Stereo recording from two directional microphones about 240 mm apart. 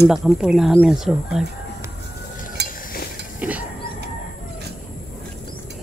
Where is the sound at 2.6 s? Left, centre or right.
Left.